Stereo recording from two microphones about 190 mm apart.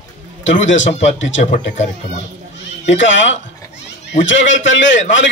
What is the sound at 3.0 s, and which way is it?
Speech, 75° left (ahead or behind).